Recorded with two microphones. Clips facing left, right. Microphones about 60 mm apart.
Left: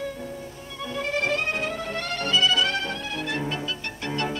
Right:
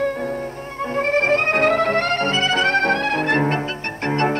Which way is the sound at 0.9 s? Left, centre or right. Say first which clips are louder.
Right 8 dB; right.